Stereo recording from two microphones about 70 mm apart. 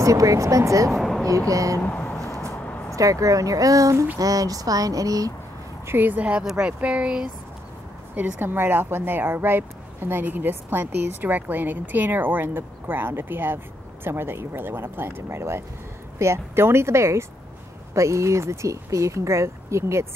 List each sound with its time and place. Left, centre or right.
0.0 s speech: right
0.9 s speech: centre
1.5 s speech: right
1.8 s speech: left
3.0 s speech: right
5.9 s speech: right
8.2 s speech: right